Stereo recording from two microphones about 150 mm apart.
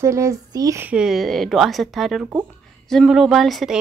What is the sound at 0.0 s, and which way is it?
Speech, 20° right (ahead or behind).